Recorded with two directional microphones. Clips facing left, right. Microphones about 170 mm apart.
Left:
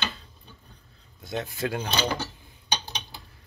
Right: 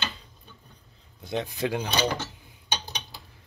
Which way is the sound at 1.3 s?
15° right (ahead or behind).